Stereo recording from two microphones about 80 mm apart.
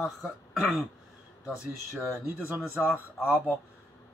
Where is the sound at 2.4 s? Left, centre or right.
Right.